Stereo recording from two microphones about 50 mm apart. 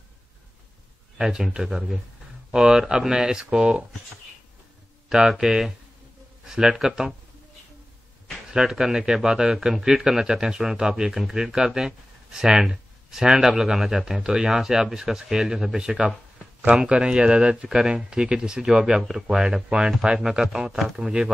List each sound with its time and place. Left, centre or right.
1.1 s a man's voice: centre
5.4 s a man's voice: centre
8.5 s a man's voice: centre
16.6 s a man's voice: right